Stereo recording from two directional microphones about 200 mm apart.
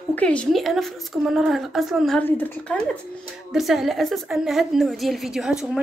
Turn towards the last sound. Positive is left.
turn(degrees=0)  # may be behind; listen again after turning